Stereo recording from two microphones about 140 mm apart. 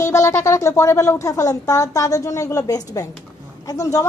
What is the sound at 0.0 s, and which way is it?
Speech, 20° left (ahead or behind).